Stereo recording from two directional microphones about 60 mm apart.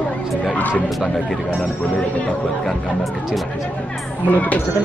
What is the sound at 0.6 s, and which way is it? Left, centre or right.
Speech, left.